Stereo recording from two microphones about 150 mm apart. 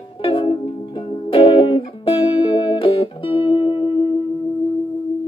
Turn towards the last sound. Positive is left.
turn(degrees=35)  # may be behind; listen again after turning